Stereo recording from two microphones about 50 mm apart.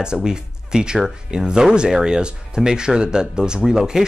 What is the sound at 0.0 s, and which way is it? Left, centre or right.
Speech, centre.